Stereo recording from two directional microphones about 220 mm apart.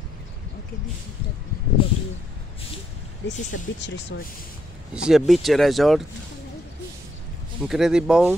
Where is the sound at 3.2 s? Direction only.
55° left (ahead or behind).